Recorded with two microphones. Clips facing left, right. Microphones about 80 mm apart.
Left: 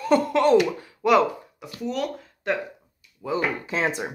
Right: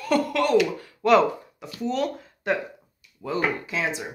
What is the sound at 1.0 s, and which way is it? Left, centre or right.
Speech, centre.